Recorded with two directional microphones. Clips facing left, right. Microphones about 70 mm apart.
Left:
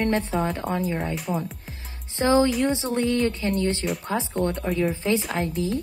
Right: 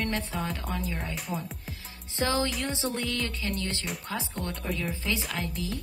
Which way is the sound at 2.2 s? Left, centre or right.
Left.